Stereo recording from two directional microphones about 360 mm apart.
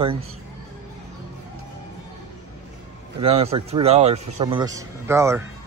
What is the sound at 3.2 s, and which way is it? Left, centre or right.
Speech, centre.